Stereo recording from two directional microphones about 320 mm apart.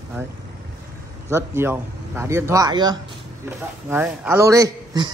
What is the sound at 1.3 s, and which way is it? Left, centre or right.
Speech, centre.